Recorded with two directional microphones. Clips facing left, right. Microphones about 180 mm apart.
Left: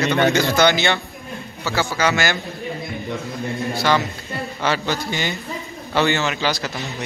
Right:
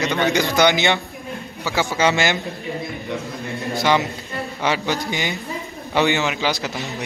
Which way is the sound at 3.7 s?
20° right (ahead or behind).